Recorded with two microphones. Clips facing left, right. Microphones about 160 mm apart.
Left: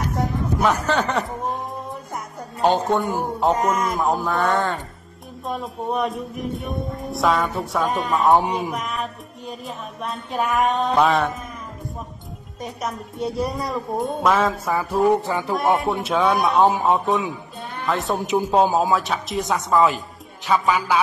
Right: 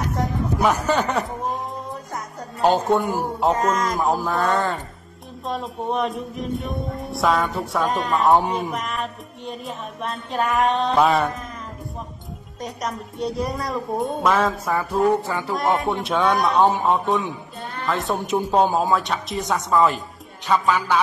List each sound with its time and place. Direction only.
0.6 s speech: 10° right (ahead or behind)
2.6 s music: centre (ahead or behind)
12.6 s music: centre (ahead or behind)
15.0 s a sound: 15° left (ahead or behind)
15.5 s music: centre (ahead or behind)
20.6 s a sound: 10° left (ahead or behind)